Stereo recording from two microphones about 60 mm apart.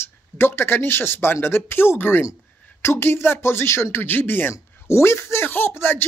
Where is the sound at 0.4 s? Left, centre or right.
Left.